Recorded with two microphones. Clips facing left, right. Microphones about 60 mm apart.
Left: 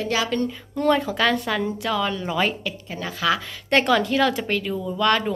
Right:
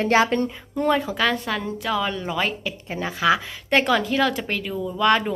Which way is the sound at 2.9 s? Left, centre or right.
Centre.